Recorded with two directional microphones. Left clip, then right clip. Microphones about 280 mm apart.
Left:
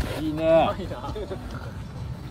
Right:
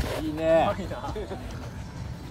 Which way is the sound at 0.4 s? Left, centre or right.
Left.